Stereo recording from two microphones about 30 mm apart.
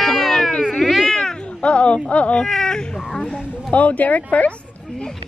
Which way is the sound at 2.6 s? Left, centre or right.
Left.